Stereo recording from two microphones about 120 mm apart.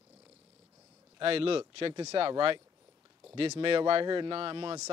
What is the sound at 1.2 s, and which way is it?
A man's voice, 50° right (ahead or behind).